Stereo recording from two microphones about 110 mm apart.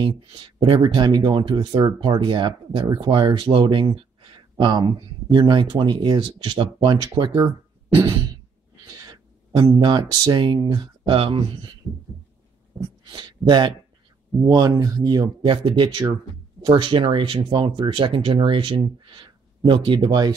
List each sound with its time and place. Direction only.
0.4 s speech: 55° right (ahead or behind)
0.8 s speech: 40° right (ahead or behind)
8.8 s a sound: 35° right (ahead or behind)
9.8 s speech: 40° right (ahead or behind)
13.1 s speech: 45° right (ahead or behind)
15.4 s speech: 50° right (ahead or behind)